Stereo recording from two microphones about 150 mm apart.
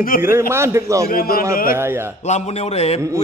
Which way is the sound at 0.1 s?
70° left (ahead or behind).